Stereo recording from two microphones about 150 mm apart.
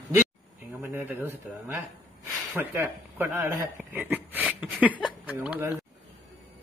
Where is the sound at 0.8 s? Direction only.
10° right (ahead or behind).